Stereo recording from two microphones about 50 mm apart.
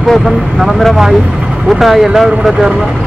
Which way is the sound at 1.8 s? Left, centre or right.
Centre.